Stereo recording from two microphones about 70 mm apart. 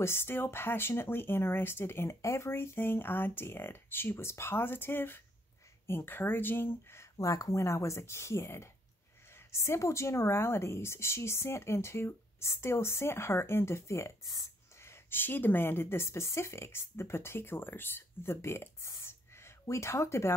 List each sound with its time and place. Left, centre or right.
0.0 s speech: left